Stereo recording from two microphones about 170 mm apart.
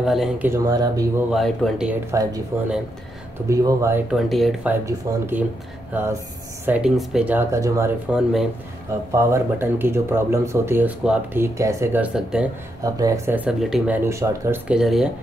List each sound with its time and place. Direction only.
0.0 s speech: centre (ahead or behind)
0.5 s speech: 20° right (ahead or behind)
1.3 s speech: centre (ahead or behind)
2.0 s speech: 20° right (ahead or behind)
3.4 s speech: 15° right (ahead or behind)
4.1 s speech: centre (ahead or behind)
4.6 s speech: 10° right (ahead or behind)
8.1 s speech: centre (ahead or behind)
9.1 s speech: 15° right (ahead or behind)
12.8 s speech: 20° right (ahead or behind)
14.7 s speech: centre (ahead or behind)